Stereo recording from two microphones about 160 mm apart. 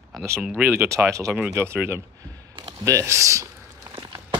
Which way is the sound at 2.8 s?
20° right (ahead or behind).